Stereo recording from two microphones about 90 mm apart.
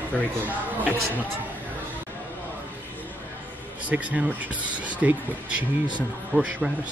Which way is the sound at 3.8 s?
15° right (ahead or behind).